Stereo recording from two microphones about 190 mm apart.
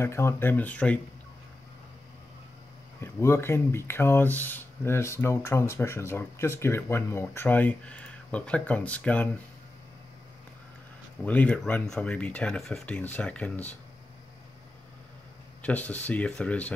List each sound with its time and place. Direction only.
0.0 s speech: 15° left (ahead or behind)
3.0 s speech: 15° left (ahead or behind)
11.2 s speech: 5° left (ahead or behind)
15.6 s speech: 10° left (ahead or behind)